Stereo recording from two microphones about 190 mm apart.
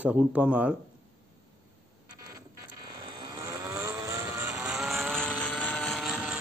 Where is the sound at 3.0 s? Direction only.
20° right (ahead or behind).